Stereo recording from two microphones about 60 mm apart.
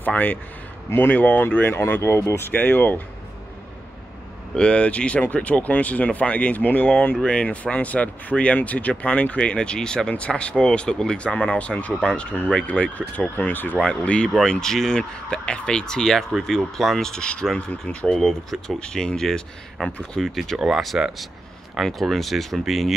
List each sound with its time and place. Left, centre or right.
0.0 s speech: left
1.1 s speech: left
1.9 s speech: left
4.6 s speech: centre
13.8 s speech: centre
18.1 s speech: centre